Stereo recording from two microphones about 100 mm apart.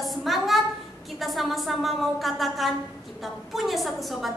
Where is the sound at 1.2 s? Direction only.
Centre (ahead or behind).